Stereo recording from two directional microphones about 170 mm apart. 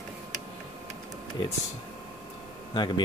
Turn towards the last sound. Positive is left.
turn(degrees=25)  # may be behind; listen again after turning